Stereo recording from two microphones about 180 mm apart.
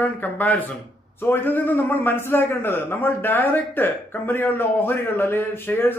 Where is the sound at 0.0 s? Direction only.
10° left (ahead or behind).